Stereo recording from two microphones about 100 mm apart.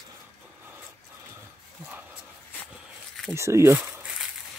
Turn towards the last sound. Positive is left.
turn(degrees=-30)  # may be behind; listen again after turning